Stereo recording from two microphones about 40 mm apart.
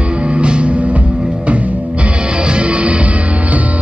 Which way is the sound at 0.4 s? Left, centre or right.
Right.